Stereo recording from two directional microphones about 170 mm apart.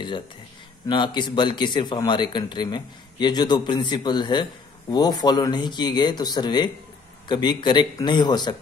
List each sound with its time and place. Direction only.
0.8 s speech: 25° left (ahead or behind)